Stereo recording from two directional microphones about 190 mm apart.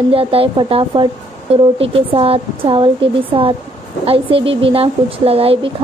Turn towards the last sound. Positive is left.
turn(degrees=-30)  # may be behind; listen again after turning